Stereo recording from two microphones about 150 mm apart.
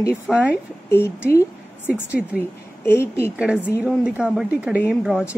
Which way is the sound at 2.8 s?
15° left (ahead or behind).